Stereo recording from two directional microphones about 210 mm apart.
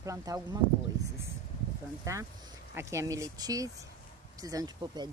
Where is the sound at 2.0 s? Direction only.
15° right (ahead or behind).